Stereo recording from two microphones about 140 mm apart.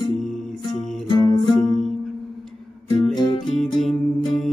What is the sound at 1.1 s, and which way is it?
Music, 30° left (ahead or behind).